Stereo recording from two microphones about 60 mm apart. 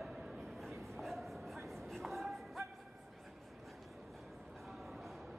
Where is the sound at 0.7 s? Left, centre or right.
Centre.